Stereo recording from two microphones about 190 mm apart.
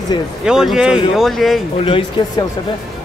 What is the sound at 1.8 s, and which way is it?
Speech, 30° left (ahead or behind).